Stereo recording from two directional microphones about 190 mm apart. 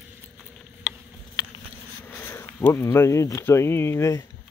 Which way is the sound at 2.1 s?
10° left (ahead or behind).